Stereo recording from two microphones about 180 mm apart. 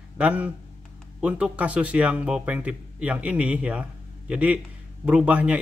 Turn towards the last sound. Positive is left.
turn(degrees=-5)  # may be behind; listen again after turning